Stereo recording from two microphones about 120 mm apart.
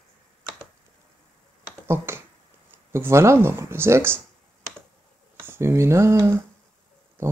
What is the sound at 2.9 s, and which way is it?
Speech, 25° right (ahead or behind).